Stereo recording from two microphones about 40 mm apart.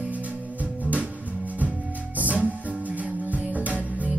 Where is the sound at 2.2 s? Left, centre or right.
Right.